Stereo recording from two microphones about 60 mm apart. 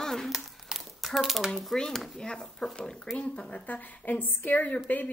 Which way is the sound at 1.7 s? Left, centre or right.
Centre.